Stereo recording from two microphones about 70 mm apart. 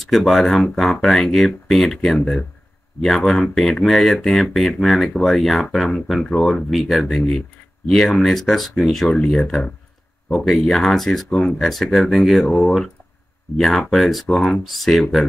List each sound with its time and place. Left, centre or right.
0.0 s speech: centre
9.1 s speech: centre
10.3 s speech: centre
12.4 s speech: centre
13.6 s speech: centre